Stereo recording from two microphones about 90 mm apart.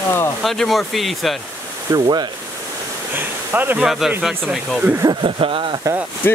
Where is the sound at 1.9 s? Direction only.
50° right (ahead or behind).